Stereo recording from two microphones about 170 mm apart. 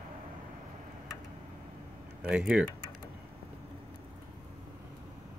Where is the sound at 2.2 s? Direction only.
5° right (ahead or behind).